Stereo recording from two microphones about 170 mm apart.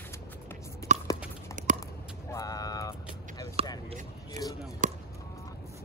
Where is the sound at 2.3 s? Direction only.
20° left (ahead or behind).